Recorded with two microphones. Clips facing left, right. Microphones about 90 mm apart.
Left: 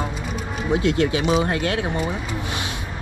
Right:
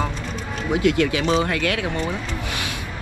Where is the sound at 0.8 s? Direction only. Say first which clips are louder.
Right 3 dB; 25° left (ahead or behind).